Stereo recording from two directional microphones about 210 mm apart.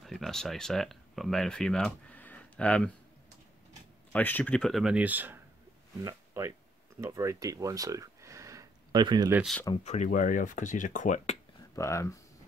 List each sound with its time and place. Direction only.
0.0 s speech: centre (ahead or behind)
4.1 s speech: 10° left (ahead or behind); by 9.3 s 20° right (ahead or behind)
9.3 s speech: centre (ahead or behind)
9.8 s speech: 35° left (ahead or behind)
11.7 s speech: 15° left (ahead or behind)